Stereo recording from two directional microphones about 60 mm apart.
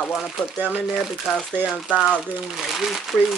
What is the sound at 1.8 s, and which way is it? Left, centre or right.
Speech, centre.